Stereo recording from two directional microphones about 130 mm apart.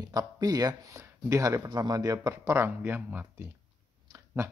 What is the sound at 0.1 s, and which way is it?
Speech, 30° right (ahead or behind).